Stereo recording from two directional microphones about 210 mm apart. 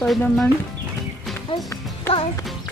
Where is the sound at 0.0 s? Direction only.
5° left (ahead or behind).